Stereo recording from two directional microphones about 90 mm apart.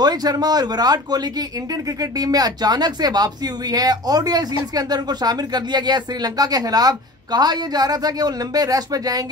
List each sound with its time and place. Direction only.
0.0 s speech: 45° right (ahead or behind)